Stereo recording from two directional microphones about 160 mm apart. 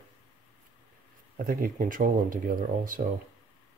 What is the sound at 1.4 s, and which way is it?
Speech, 60° right (ahead or behind).